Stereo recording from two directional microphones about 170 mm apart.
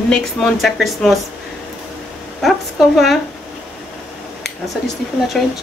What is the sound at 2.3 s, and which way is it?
Speech, centre (ahead or behind).